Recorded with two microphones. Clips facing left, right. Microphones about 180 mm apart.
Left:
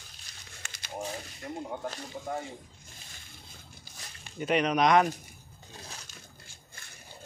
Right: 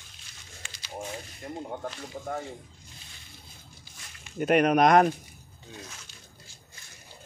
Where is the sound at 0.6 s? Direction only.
45° left (ahead or behind).